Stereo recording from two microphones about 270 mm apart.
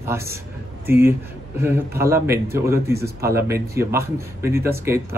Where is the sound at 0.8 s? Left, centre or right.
Centre.